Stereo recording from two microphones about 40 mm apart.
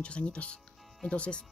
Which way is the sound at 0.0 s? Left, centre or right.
Left.